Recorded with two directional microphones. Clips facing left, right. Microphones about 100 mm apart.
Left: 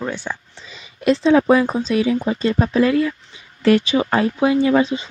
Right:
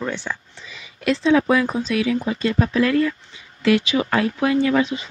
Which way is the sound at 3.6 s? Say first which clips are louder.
Left 3 dB; 40° left (ahead or behind).